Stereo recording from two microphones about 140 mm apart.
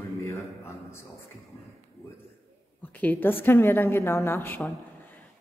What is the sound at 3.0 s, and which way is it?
A woman's voice, 15° left (ahead or behind).